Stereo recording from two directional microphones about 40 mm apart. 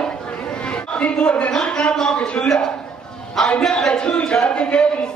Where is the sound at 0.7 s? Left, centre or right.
Left.